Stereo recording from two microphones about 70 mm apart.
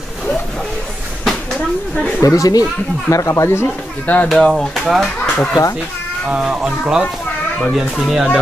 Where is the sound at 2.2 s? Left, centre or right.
Left.